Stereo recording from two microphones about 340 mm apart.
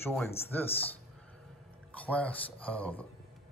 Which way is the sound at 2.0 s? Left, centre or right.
Centre.